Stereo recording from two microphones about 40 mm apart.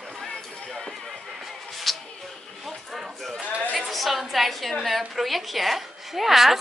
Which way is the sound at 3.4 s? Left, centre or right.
Right.